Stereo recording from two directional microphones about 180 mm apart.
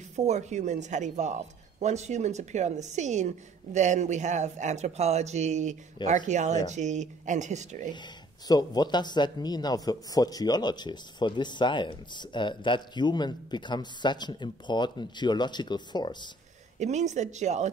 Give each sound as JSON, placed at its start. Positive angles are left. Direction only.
{"t": 0.1, "sound": "speech", "side_deg": -40}
{"t": 8.5, "sound": "speech", "side_deg": 20}
{"t": 16.7, "sound": "speech", "side_deg": -40}